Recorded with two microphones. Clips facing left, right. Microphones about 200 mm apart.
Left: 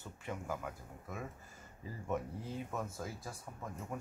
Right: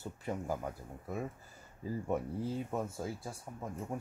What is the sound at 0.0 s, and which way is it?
Speech, 35° right (ahead or behind).